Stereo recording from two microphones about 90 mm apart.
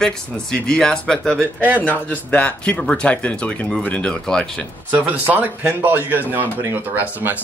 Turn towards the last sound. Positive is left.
turn(degrees=-20)  # may be behind; listen again after turning